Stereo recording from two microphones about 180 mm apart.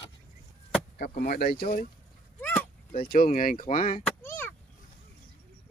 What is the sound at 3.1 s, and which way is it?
Speech, 50° left (ahead or behind).